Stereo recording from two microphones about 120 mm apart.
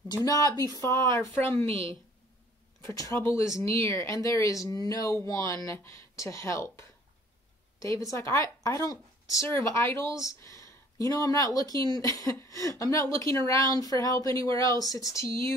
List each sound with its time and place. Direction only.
0.2 s speech: 30° left (ahead or behind)
1.6 s a woman's voice: 55° right (ahead or behind)
2.8 s speech: 25° left (ahead or behind)